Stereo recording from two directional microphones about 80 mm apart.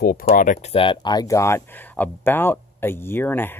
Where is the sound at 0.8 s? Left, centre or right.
Left.